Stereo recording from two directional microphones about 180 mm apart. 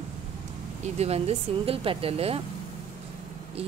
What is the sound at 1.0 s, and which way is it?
A woman's voice, 35° right (ahead or behind).